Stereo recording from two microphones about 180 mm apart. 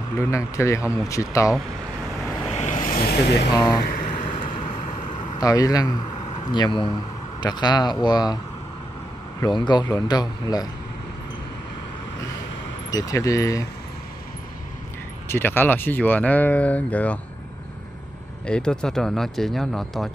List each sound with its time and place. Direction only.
0.3 s speech: 15° left (ahead or behind)
2.5 s vehicle: 40° left (ahead or behind)
4.1 s vehicle: 35° left (ahead or behind)
5.2 s speech: 20° left (ahead or behind)
9.4 s speech: 25° left (ahead or behind)
12.9 s speech: 20° left (ahead or behind)
15.2 s speech: 15° left (ahead or behind)
18.5 s speech: 5° left (ahead or behind)